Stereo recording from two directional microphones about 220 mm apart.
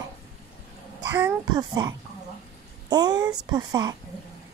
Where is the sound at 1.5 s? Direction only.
20° right (ahead or behind).